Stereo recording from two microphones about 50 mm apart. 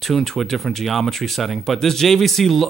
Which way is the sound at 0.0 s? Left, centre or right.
Centre.